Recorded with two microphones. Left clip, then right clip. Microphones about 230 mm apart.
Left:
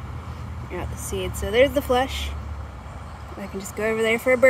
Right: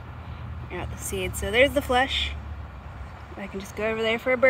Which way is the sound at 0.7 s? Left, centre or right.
Centre.